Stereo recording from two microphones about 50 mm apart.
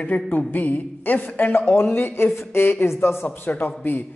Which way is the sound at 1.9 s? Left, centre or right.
Left.